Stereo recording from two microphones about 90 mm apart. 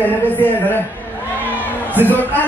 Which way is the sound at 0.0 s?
20° left (ahead or behind).